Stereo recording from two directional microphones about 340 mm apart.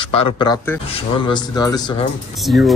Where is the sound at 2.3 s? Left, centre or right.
Centre.